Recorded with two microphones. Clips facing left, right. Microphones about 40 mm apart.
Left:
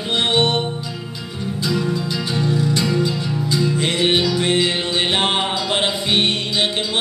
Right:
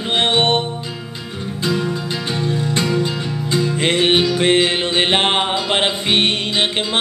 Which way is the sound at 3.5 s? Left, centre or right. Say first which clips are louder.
Right 3 dB; right.